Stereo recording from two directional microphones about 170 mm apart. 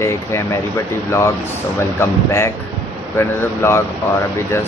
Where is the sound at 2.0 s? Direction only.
15° left (ahead or behind).